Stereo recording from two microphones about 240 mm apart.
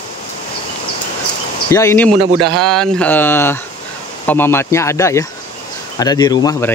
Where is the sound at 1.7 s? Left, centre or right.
Centre.